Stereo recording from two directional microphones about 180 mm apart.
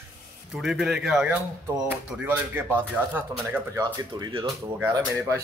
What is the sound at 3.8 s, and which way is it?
Speech, 20° right (ahead or behind).